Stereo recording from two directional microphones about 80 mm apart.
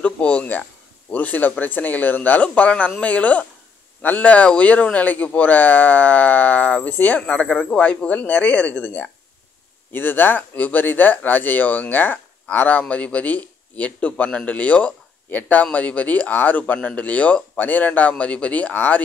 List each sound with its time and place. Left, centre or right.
0.0 s speech: centre